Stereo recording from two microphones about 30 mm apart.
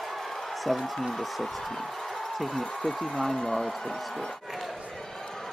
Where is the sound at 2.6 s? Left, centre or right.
Centre.